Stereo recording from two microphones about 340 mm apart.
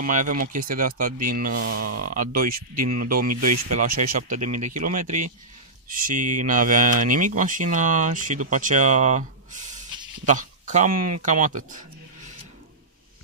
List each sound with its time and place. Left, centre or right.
0.0 s speech: right
1.7 s mantra: right
2.1 s speech: right
3.3 s mantra: right
4.7 s speech: right